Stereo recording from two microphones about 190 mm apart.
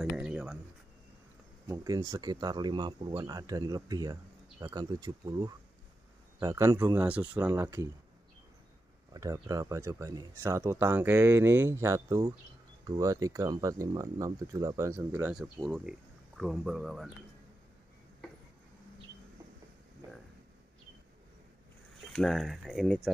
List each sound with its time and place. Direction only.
0.0 s a sound: 5° right (ahead or behind)
1.7 s speech: 15° right (ahead or behind)
9.1 s speech: 15° right (ahead or behind); by 17.1 s centre (ahead or behind)
22.1 s speech: centre (ahead or behind)